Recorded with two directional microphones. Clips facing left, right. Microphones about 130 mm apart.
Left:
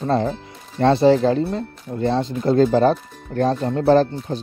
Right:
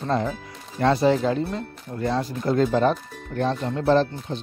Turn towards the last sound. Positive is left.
turn(degrees=40)  # may be behind; listen again after turning